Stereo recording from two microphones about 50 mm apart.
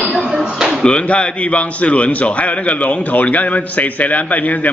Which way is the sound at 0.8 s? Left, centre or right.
Left.